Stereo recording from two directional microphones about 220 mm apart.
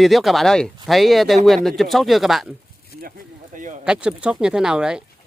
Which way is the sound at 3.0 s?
35° right (ahead or behind).